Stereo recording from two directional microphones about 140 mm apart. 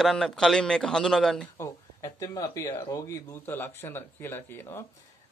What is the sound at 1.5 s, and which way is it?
Speech, 20° left (ahead or behind).